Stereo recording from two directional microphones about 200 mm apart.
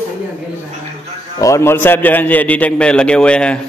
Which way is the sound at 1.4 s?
15° left (ahead or behind).